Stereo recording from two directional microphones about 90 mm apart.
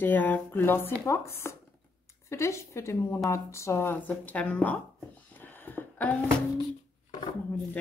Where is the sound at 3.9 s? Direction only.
15° left (ahead or behind).